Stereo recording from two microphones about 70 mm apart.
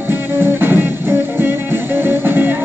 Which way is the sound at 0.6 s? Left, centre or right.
Right.